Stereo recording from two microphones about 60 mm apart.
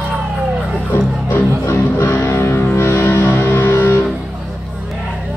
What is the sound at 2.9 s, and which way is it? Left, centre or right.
Music, left.